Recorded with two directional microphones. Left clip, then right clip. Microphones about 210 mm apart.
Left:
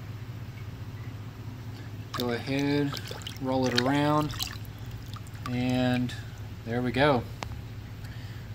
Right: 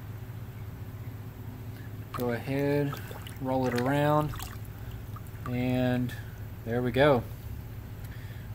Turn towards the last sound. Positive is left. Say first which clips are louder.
# right 1 dB
turn(degrees=-25)  # may be behind; listen again after turning